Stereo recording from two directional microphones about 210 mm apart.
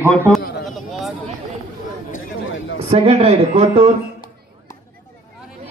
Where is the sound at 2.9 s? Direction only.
30° right (ahead or behind).